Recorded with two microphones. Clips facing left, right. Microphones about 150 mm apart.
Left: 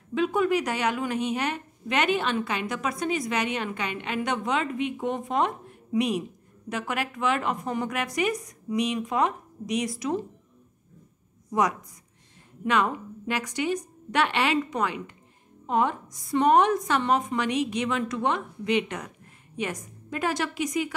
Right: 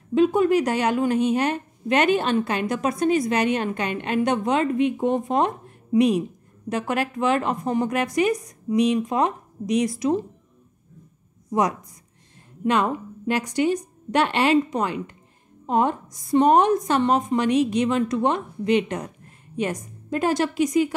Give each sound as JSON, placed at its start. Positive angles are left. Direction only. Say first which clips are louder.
{"t": 0.1, "sound": "a woman's voice", "louder": "right 6 dB", "side_deg": -35}
{"t": 12.6, "sound": "a woman's voice", "louder": "right 3 dB", "side_deg": -35}